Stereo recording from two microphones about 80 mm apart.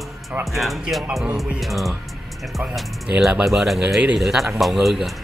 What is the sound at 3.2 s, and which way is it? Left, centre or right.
Speech, centre.